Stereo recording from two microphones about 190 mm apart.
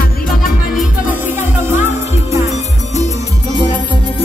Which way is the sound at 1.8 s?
35° left (ahead or behind).